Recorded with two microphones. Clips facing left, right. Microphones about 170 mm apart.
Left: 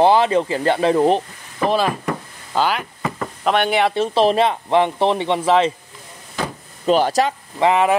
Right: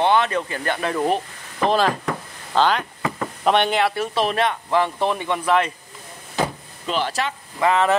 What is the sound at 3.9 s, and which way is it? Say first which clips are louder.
Speech: left 6 dB; 30° left (ahead or behind).